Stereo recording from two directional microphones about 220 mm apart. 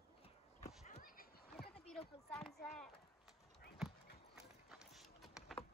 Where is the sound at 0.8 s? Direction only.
35° left (ahead or behind).